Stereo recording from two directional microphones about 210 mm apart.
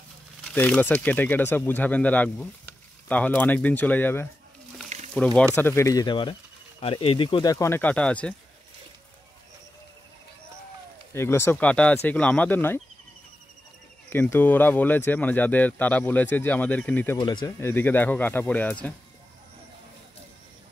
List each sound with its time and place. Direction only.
0.5 s speech: 5° left (ahead or behind)
4.8 s a sound: 35° right (ahead or behind)
5.1 s speech: 5° left (ahead or behind)
11.1 s speech: 10° left (ahead or behind)
14.1 s speech: 10° left (ahead or behind)
17.2 s speech: 20° left (ahead or behind)